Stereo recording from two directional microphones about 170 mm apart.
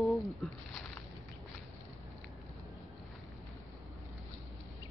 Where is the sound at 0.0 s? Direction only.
Centre (ahead or behind).